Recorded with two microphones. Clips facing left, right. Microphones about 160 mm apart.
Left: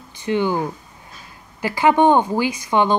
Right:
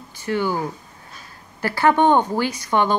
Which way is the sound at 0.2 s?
20° left (ahead or behind).